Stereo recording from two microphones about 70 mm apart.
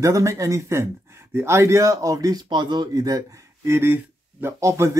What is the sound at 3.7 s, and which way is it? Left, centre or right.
Speech, right.